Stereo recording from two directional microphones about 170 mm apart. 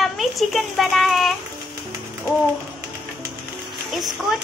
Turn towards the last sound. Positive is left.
turn(degrees=0)  # may be behind; listen again after turning